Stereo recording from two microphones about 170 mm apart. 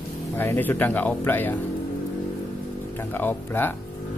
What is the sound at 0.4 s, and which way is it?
Speech, 10° left (ahead or behind).